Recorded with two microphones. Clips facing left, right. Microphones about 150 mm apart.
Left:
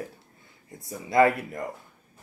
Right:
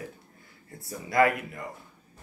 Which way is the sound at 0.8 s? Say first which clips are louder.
Left 3 dB; 25° left (ahead or behind).